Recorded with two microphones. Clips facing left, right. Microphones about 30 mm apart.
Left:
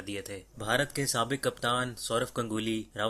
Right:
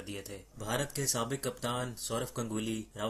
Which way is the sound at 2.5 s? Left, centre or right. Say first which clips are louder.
Left 4 dB; left.